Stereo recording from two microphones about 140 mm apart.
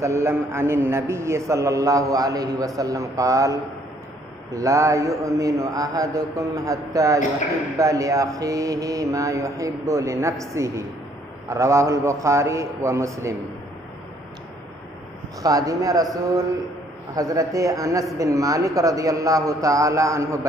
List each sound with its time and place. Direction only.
0.0 s a man's voice: 20° right (ahead or behind)
15.4 s a man's voice: 25° right (ahead or behind)
17.1 s a man's voice: 25° right (ahead or behind)